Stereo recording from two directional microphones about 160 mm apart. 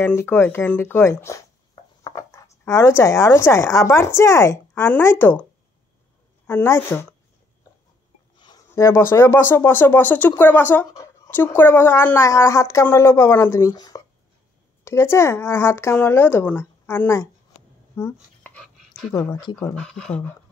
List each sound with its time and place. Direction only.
0.0 s speech: 15° left (ahead or behind)
6.4 s speech: 15° left (ahead or behind)
8.4 s speech: 25° left (ahead or behind)
17.9 s a sound: 10° left (ahead or behind)
19.6 s speech: 5° left (ahead or behind)